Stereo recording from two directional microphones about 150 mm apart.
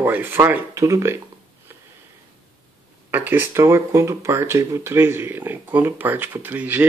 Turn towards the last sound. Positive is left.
turn(degrees=-10)  # may be behind; listen again after turning